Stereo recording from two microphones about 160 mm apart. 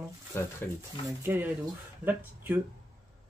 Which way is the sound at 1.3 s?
10° right (ahead or behind).